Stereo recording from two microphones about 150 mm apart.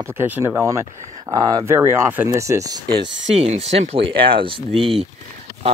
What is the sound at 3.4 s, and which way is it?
Speech, 45° right (ahead or behind).